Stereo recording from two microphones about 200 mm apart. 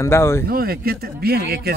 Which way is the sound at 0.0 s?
15° left (ahead or behind).